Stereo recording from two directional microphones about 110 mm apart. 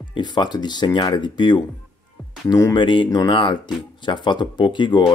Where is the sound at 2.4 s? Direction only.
30° left (ahead or behind).